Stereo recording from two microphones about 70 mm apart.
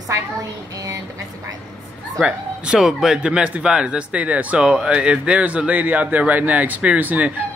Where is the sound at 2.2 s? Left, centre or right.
Centre.